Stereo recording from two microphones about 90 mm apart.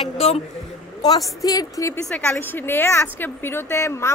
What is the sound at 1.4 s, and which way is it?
Speech, 40° left (ahead or behind).